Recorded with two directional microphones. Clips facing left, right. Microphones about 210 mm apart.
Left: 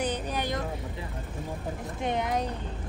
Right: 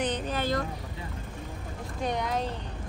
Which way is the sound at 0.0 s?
10° left (ahead or behind).